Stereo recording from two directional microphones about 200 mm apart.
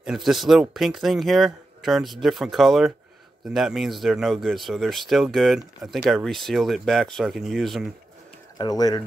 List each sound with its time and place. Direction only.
0.0 s speech: centre (ahead or behind)
8.5 s speech: 20° left (ahead or behind)